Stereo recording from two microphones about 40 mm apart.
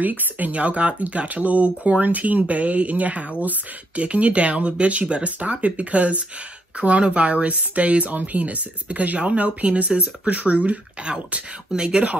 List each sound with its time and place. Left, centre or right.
0.0 s speech: right
0.5 s speech: right
11.7 s speech: right